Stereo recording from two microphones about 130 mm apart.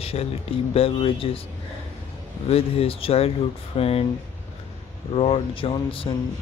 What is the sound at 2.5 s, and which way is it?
Speech, 50° left (ahead or behind).